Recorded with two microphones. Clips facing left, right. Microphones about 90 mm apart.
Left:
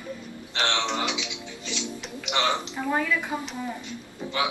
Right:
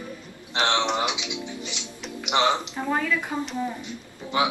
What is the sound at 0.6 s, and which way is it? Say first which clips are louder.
Speech: right 3 dB; 20° right (ahead or behind).